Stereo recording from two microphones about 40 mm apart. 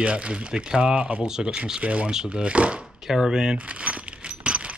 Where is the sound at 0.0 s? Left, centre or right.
Right.